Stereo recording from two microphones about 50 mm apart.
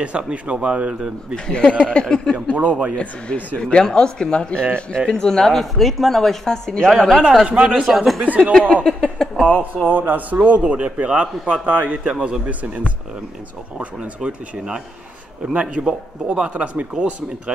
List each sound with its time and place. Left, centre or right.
0.0 s a man's voice: right
1.3 s speech: centre
2.5 s a man's voice: right
3.5 s speech: centre
7.4 s a man's voice: right
7.9 s speech: centre
8.2 s a man's voice: right
8.8 s a sound: centre
9.8 s a man's voice: right
15.6 s a man's voice: centre